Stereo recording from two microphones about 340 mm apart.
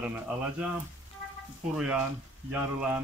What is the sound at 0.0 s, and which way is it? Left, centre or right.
Speech, centre.